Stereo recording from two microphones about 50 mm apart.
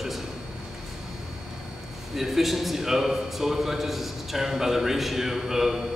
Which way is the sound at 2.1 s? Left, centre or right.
Centre.